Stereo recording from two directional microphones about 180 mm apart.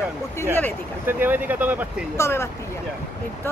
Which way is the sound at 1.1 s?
10° right (ahead or behind).